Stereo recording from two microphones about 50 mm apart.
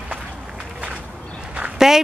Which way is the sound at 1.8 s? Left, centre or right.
Centre.